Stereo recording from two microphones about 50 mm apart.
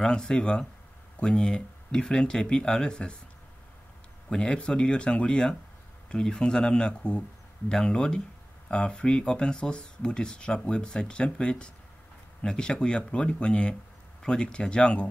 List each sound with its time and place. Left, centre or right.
0.0 s speech: centre
4.3 s speech: centre